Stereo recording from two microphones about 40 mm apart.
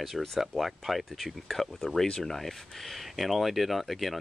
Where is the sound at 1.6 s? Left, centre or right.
Centre.